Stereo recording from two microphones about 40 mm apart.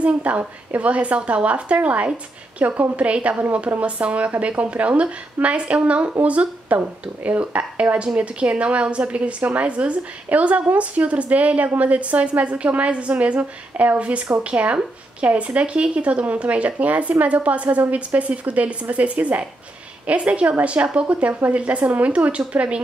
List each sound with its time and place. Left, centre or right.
0.0 s a woman's voice: right